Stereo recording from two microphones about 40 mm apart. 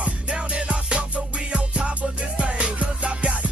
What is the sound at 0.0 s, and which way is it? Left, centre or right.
Music, right.